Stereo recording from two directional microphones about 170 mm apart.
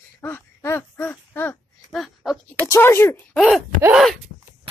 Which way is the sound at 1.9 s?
Centre (ahead or behind).